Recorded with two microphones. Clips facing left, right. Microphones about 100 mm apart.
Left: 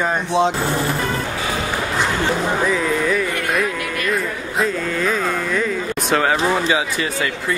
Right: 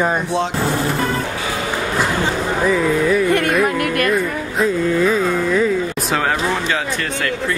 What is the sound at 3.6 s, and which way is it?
Music, 60° right (ahead or behind).